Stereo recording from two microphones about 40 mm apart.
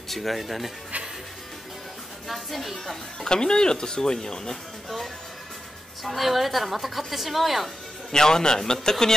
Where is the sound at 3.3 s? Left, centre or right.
Centre.